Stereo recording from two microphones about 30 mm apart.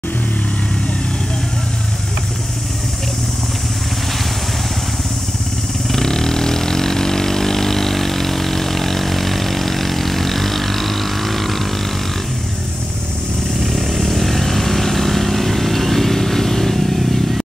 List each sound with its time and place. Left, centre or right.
5.9 s vehicle: centre
13.7 s vehicle: centre